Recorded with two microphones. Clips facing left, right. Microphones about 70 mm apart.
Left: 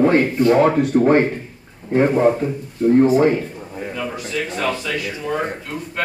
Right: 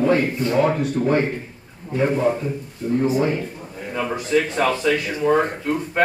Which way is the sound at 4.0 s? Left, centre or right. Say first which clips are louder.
Right 6 dB; right.